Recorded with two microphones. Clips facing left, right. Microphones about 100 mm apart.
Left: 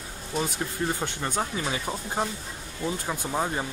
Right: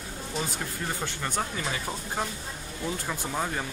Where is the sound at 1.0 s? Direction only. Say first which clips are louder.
Left 2 dB; 25° left (ahead or behind).